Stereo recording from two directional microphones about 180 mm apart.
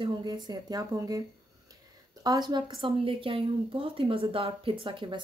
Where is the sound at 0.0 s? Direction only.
25° right (ahead or behind).